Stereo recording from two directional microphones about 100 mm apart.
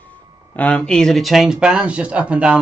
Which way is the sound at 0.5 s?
15° left (ahead or behind).